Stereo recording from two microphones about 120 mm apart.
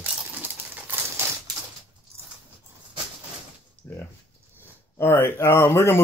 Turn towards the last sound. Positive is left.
turn(degrees=20)  # may be behind; listen again after turning